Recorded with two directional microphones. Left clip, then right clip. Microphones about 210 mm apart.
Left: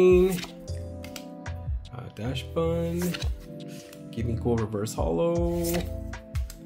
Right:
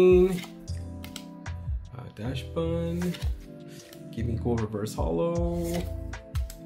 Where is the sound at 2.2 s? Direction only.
15° left (ahead or behind).